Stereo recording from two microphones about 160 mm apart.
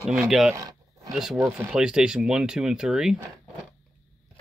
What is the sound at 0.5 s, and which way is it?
Roaring cats, 20° right (ahead or behind).